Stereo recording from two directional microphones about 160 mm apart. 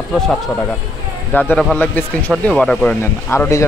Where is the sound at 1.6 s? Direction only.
5° right (ahead or behind).